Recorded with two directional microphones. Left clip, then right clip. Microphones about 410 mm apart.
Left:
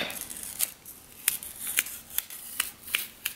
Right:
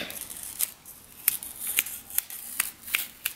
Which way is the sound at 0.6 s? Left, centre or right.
Centre.